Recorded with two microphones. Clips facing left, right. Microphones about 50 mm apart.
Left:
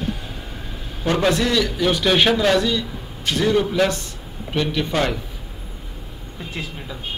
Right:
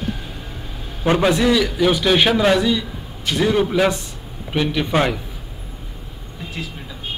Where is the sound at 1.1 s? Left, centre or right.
Centre.